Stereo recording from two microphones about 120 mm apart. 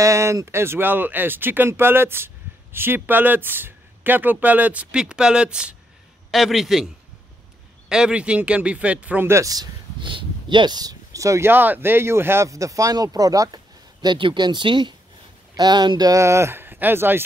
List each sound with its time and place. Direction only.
0.0 s a man's voice: 25° right (ahead or behind); by 6.9 s 5° right (ahead or behind)
7.9 s speech: 10° right (ahead or behind); by 9.7 s 30° right (ahead or behind)
9.9 s speech: 45° right (ahead or behind)
14.0 s speech: 40° right (ahead or behind); by 17.2 s 20° right (ahead or behind)